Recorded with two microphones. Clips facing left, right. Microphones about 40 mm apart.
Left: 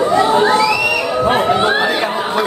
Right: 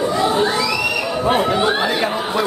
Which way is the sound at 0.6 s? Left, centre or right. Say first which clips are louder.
Left 5 dB; left.